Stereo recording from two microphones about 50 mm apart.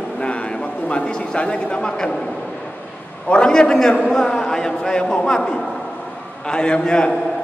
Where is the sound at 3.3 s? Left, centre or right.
Centre.